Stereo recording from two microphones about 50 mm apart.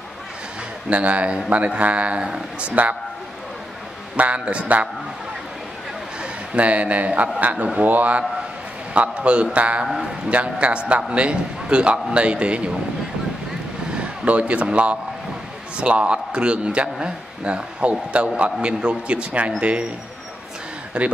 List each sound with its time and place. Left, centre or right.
0.8 s a man's voice: right
2.7 s a man's voice: right
4.2 s a man's voice: right
6.5 s a man's voice: right
13.9 s a man's voice: right
21.0 s a man's voice: right